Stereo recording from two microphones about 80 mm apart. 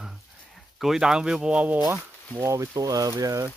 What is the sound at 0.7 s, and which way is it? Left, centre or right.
Speech, centre.